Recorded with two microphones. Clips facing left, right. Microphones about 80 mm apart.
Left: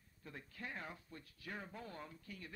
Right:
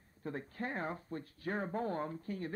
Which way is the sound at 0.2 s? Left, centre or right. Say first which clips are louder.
Right 11 dB; right.